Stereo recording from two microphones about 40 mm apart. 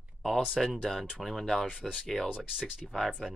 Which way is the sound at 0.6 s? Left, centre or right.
Centre.